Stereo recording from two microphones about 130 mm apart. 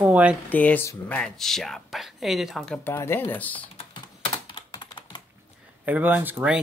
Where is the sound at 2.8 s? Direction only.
15° left (ahead or behind).